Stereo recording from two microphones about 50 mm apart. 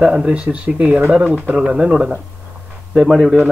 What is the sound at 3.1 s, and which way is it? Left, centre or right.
Speech, centre.